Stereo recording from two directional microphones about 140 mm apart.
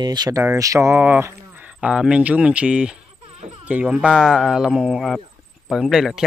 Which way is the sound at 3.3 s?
45° right (ahead or behind).